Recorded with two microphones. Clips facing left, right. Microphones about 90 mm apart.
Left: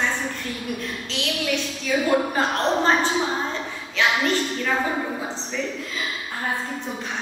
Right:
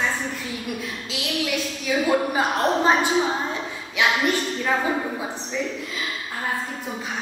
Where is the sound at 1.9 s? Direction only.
10° right (ahead or behind).